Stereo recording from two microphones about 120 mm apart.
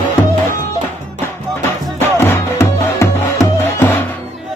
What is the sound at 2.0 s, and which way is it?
Music, 20° left (ahead or behind).